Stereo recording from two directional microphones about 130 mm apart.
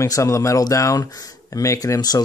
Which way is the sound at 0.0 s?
25° left (ahead or behind).